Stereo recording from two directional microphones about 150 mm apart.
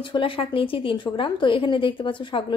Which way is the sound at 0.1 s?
35° left (ahead or behind).